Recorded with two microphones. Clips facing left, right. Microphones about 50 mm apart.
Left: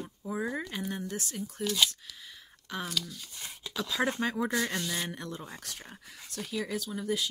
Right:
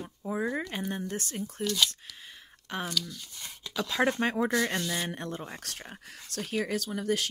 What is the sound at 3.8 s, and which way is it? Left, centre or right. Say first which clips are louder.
Speech: right 3 dB; right.